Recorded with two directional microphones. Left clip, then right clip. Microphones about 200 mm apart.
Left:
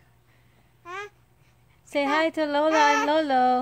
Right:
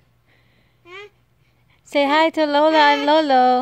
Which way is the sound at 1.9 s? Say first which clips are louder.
Right 7 dB; 35° right (ahead or behind).